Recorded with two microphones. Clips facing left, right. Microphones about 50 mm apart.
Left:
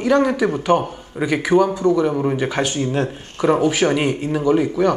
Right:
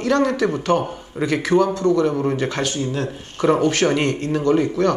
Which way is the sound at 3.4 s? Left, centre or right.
Centre.